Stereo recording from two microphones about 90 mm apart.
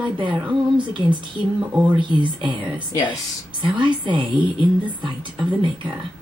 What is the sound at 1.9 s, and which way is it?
A woman's voice, 65° right (ahead or behind).